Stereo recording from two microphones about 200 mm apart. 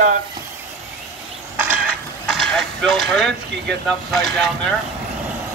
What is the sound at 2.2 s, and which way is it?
Speech, centre (ahead or behind).